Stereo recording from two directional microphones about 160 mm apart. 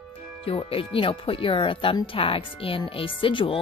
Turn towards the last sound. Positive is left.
turn(degrees=30)  # may be behind; listen again after turning